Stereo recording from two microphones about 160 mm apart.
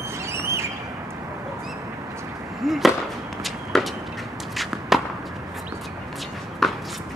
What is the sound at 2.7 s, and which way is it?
Fireworks, centre (ahead or behind).